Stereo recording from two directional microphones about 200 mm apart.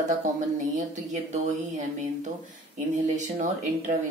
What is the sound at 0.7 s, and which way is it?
Speech, 35° right (ahead or behind).